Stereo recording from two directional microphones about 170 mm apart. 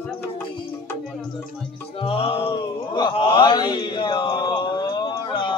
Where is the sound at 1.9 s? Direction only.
30° left (ahead or behind).